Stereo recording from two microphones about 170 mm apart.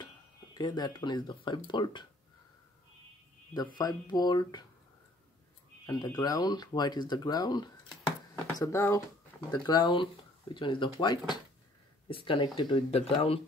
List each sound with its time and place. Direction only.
0.6 s speech: 25° left (ahead or behind)
3.7 s speech: 25° left (ahead or behind)
5.9 s speech: 20° left (ahead or behind)